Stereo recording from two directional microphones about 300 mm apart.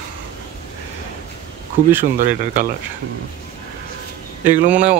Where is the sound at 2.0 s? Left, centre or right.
Right.